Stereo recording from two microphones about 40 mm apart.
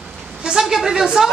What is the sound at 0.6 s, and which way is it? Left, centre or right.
Speech, centre.